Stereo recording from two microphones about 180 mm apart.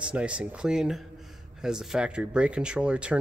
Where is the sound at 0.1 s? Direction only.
5° right (ahead or behind).